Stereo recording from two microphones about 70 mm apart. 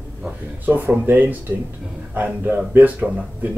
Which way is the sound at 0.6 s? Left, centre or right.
Right.